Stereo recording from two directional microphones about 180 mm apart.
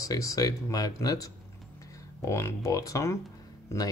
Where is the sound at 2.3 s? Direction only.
15° left (ahead or behind).